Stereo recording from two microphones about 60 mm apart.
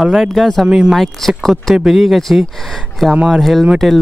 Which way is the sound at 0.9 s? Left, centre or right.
Centre.